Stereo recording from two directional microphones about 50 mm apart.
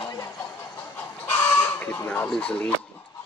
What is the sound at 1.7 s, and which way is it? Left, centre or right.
Speech, left.